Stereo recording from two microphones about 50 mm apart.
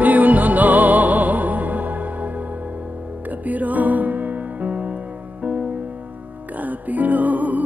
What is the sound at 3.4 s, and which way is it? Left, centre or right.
Music, right.